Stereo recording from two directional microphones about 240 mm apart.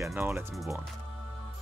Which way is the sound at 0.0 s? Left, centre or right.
Centre.